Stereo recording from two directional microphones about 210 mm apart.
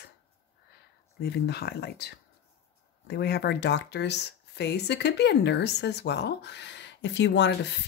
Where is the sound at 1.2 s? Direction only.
50° left (ahead or behind).